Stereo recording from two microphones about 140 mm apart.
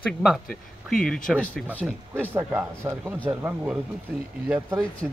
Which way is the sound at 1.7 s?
10° right (ahead or behind).